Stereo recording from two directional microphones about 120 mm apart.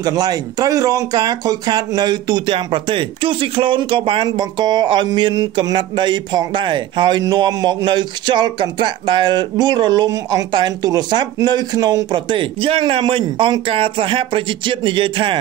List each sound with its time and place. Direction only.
0.0 s a man's voice: 30° right (ahead or behind)